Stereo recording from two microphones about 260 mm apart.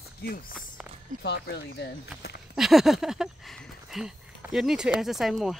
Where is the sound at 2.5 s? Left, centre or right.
Centre.